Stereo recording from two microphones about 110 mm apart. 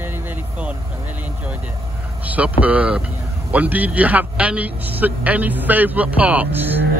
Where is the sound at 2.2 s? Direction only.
15° right (ahead or behind).